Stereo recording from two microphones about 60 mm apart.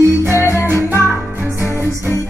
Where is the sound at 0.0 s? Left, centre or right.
Right.